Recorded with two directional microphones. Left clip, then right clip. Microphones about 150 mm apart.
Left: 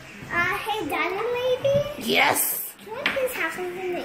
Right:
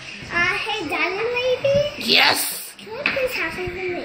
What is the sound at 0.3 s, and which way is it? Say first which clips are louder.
Child singing: right 3 dB; 15° left (ahead or behind).